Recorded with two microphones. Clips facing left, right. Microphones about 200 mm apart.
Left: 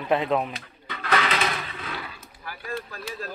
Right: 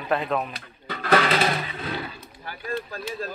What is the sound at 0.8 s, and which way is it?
Music, 40° right (ahead or behind).